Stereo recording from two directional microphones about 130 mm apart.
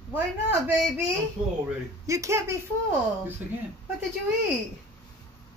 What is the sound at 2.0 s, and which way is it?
Speech, 25° right (ahead or behind).